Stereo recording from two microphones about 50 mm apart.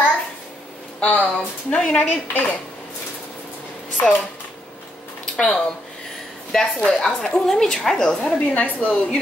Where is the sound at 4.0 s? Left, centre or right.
Left.